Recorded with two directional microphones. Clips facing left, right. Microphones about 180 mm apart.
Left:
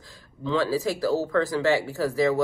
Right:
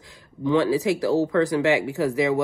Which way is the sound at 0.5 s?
15° right (ahead or behind).